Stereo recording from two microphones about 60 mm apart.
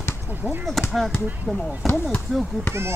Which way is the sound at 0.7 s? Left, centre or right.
Centre.